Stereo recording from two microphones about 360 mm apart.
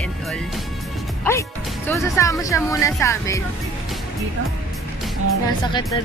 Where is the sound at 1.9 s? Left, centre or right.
Centre.